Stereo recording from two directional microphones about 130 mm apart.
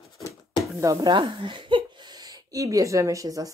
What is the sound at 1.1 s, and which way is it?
Speech, 45° right (ahead or behind).